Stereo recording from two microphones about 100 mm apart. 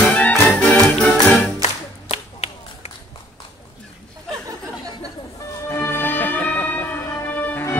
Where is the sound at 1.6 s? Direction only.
90° left.